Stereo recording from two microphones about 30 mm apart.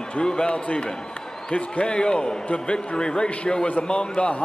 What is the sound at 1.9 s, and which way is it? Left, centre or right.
A man's voice, left.